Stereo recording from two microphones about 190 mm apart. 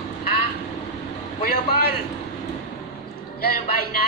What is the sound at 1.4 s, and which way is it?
Speech, 55° left (ahead or behind).